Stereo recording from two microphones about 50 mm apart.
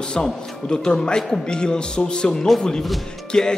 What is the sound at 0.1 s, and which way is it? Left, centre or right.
A man's voice, centre.